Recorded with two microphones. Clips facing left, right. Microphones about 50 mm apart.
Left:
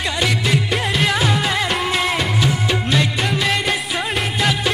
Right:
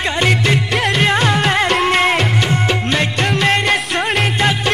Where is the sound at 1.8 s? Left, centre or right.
Right.